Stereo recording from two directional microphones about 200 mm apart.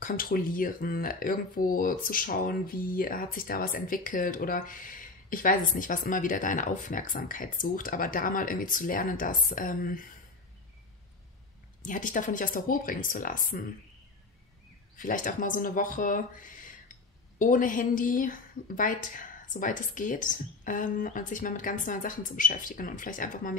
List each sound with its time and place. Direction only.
0.0 s speech: 45° left (ahead or behind)
11.8 s speech: 40° left (ahead or behind)
15.0 s a woman's voice: 40° left (ahead or behind)